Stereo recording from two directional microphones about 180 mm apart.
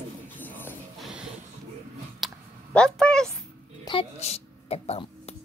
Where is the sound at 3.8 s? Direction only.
30° left (ahead or behind).